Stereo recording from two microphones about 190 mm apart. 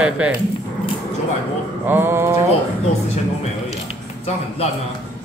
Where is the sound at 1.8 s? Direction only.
10° right (ahead or behind).